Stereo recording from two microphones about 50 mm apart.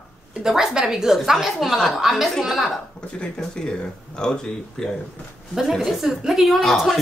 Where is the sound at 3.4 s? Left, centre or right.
Centre.